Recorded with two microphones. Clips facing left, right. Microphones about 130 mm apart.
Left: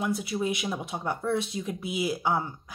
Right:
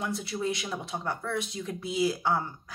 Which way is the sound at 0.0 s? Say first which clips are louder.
Left 3 dB; 10° left (ahead or behind).